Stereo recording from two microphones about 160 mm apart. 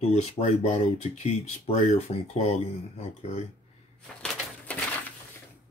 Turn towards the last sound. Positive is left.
turn(degrees=5)  # may be behind; listen again after turning